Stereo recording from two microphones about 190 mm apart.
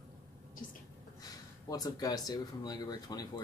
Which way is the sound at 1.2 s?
20° left (ahead or behind).